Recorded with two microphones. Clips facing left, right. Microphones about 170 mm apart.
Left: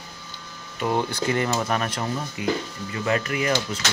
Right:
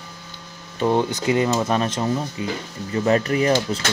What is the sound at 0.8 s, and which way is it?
Speech, 20° right (ahead or behind).